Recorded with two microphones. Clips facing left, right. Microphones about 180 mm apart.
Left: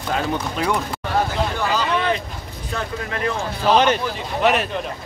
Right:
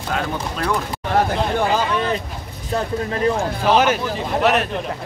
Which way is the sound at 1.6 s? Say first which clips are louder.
Right 4 dB; 50° right (ahead or behind).